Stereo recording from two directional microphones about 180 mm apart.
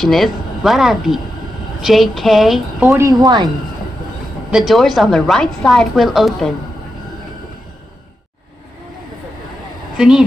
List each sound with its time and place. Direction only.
0.0 s a woman's voice: centre (ahead or behind)
2.9 s speech: 20° right (ahead or behind)
4.5 s a woman's voice: centre (ahead or behind)
9.9 s a woman's voice: 5° right (ahead or behind)